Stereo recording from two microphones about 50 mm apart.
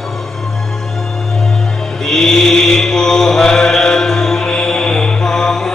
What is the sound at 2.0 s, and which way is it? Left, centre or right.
Chant, centre.